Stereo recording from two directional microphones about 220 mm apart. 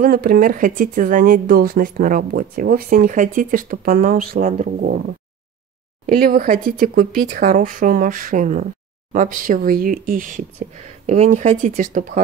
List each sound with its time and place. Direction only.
0.0 s speech: 40° right (ahead or behind)
6.0 s speech: 40° right (ahead or behind)